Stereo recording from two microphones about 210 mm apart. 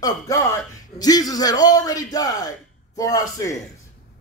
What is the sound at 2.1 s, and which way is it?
Speech, 15° left (ahead or behind).